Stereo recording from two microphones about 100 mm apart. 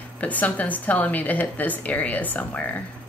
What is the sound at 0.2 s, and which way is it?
A woman's voice, 15° left (ahead or behind).